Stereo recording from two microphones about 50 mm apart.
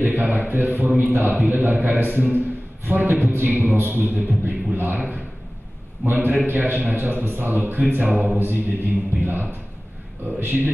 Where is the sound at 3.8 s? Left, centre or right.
Right.